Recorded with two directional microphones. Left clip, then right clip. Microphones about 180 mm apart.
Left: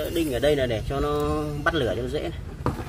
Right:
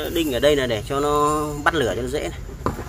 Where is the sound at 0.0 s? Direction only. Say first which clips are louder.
Right 4 dB; 25° right (ahead or behind).